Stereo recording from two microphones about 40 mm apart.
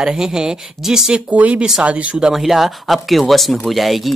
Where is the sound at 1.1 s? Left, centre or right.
Right.